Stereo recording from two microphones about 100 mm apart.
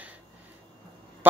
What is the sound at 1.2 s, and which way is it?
Honk, 20° right (ahead or behind).